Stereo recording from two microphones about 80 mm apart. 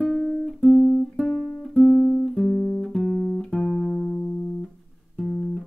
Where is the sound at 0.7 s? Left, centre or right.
Centre.